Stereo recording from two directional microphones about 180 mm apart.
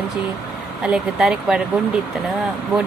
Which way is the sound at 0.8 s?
5° right (ahead or behind).